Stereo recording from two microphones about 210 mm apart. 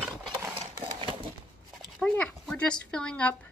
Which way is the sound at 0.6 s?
25° right (ahead or behind).